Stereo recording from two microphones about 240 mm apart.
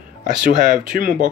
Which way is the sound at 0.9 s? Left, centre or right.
Right.